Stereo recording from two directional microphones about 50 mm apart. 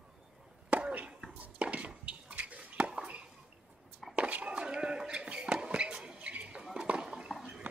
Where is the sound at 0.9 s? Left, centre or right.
Right.